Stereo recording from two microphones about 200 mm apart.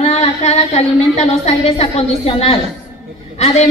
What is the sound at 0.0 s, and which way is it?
A woman's voice, 30° left (ahead or behind).